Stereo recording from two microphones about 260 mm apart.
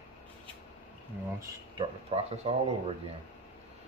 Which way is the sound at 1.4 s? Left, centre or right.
Right.